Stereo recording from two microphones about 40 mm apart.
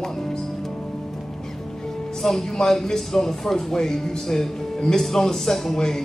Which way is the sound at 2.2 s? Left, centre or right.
Centre.